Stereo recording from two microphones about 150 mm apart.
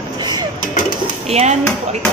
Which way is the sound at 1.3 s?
45° right (ahead or behind).